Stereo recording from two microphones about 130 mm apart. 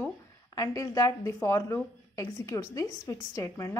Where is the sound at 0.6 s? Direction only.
30° left (ahead or behind).